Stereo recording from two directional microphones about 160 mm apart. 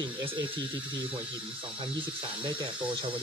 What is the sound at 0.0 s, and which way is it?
Speech, 30° right (ahead or behind).